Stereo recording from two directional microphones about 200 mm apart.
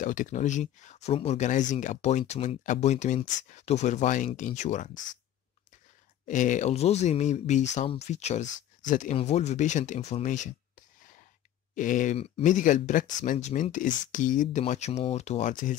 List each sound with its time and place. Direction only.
0.0 s speech: 40° left (ahead or behind)
6.2 s speech: 40° left (ahead or behind)
11.7 s speech: 40° left (ahead or behind)